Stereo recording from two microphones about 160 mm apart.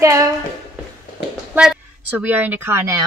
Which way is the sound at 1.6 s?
5° right (ahead or behind).